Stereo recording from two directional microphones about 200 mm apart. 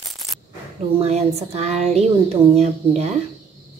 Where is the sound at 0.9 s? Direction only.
30° right (ahead or behind).